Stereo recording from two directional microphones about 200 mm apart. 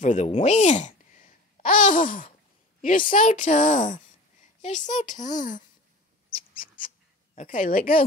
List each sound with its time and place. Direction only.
0.0 s a child's voice: 35° left (ahead or behind)
7.3 s a woman's voice: 45° left (ahead or behind)